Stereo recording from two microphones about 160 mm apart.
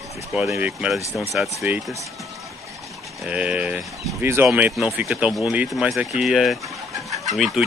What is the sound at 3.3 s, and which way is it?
Speech, 5° right (ahead or behind).